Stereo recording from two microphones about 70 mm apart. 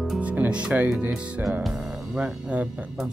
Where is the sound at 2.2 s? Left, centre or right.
Centre.